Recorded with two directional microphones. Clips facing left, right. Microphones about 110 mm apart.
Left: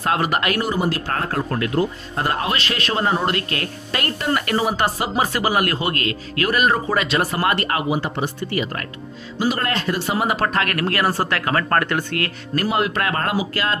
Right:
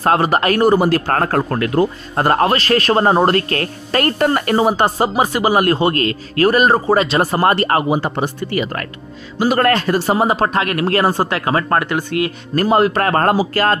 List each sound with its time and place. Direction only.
0.0 s speech: 35° right (ahead or behind)
0.6 s speech: 55° right (ahead or behind)
8.5 s speech: 60° right (ahead or behind); by 12.3 s 15° right (ahead or behind)
12.5 s speech: 40° right (ahead or behind)